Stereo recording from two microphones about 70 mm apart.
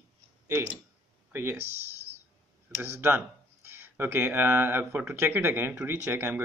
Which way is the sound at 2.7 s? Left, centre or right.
Right.